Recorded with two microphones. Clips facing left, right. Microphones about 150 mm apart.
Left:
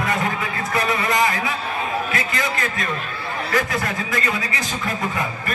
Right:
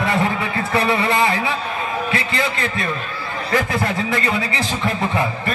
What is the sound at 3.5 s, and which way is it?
A man's voice, 25° right (ahead or behind).